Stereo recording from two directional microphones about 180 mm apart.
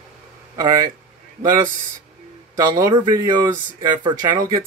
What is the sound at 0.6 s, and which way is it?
Speech, 20° right (ahead or behind).